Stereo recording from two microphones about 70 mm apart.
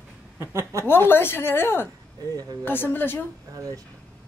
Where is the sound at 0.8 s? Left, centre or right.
Left.